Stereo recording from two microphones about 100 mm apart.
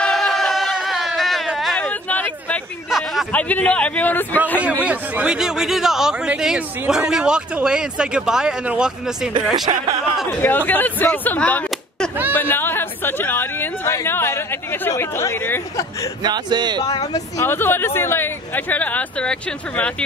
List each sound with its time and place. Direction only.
0.0 s a sound: 5° left (ahead or behind)
1.8 s a sound: 15° left (ahead or behind)
2.9 s a sound: centre (ahead or behind)
3.3 s a man's voice: 15° left (ahead or behind)
4.6 s a man's voice: 15° right (ahead or behind)
9.7 s speech: 65° right (ahead or behind)
10.4 s speech: 20° left (ahead or behind)
16.2 s a man's voice: 45° right (ahead or behind)
17.1 s speech: 25° left (ahead or behind)